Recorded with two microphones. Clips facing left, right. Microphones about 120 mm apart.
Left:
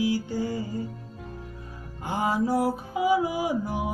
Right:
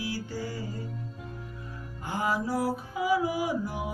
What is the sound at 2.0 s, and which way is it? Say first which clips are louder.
Mantra: left 4 dB; 20° left (ahead or behind).